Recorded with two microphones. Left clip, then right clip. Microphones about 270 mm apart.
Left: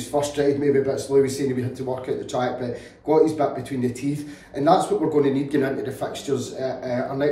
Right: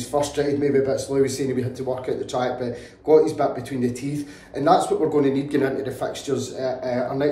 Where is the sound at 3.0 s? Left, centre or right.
Centre.